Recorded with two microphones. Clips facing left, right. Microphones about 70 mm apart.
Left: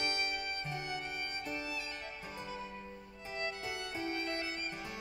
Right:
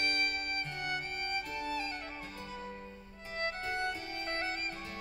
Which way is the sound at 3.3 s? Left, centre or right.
Right.